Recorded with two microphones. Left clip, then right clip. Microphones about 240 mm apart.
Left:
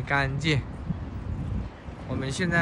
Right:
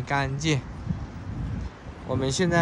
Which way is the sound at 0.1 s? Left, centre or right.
Centre.